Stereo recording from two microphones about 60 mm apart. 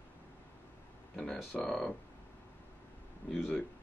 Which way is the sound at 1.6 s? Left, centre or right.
Centre.